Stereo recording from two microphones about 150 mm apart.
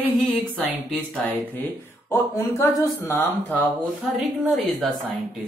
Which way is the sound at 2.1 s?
20° left (ahead or behind).